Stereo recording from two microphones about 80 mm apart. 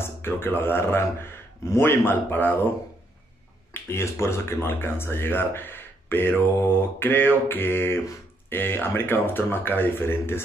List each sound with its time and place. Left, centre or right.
0.0 s speech: left
3.7 s speech: left